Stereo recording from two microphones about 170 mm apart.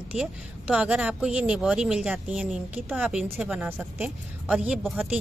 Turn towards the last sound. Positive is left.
turn(degrees=-5)  # may be behind; listen again after turning